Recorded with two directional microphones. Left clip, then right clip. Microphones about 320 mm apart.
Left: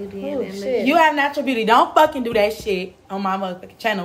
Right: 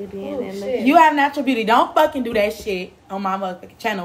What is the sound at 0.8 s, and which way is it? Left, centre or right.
A woman's voice, centre.